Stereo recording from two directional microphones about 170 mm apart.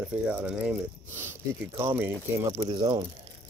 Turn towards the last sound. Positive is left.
turn(degrees=-25)  # may be behind; listen again after turning